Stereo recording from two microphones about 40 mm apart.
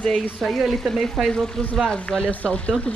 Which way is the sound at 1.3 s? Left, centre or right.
Centre.